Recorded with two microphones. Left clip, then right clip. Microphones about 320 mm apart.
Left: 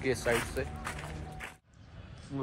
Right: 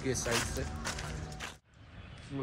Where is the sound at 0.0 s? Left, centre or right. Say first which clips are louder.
Left 3 dB; centre.